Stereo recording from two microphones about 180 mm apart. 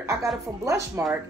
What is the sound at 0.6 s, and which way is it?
Speech, 15° right (ahead or behind).